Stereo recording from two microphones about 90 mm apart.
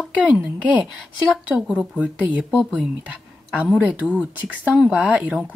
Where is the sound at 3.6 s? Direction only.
15° right (ahead or behind).